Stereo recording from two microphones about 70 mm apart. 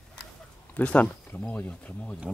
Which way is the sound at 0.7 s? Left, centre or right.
Left.